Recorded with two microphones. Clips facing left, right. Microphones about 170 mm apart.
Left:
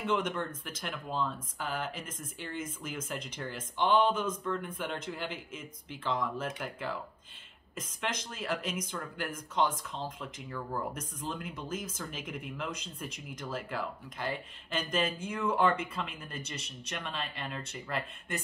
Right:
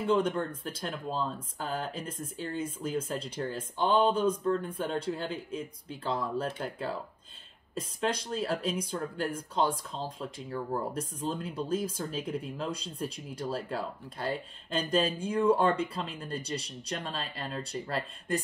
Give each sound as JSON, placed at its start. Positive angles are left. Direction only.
{"t": 0.0, "sound": "speech", "side_deg": -35}